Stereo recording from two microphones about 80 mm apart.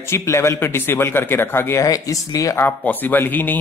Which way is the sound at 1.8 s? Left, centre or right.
Left.